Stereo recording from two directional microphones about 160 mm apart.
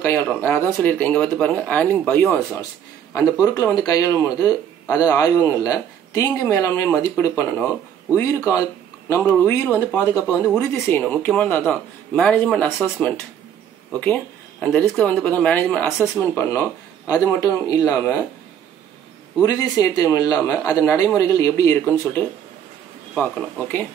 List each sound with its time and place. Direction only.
0.0 s a man's voice: 15° left (ahead or behind)
13.9 s a man's voice: 10° left (ahead or behind)
19.4 s a man's voice: 20° left (ahead or behind)
23.1 s speech: 10° left (ahead or behind)